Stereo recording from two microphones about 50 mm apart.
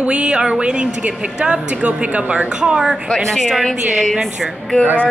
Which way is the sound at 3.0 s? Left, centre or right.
Centre.